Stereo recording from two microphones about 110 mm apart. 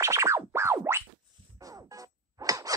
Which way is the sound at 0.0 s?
25° right (ahead or behind).